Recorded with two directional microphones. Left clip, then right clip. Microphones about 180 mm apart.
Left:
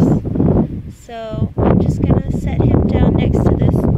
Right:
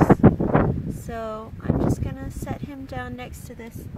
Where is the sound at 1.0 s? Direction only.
25° right (ahead or behind).